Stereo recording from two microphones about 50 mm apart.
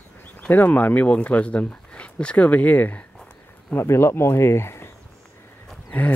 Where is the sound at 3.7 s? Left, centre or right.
Left.